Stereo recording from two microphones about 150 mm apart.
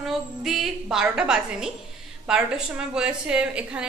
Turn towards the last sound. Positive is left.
turn(degrees=-5)  # may be behind; listen again after turning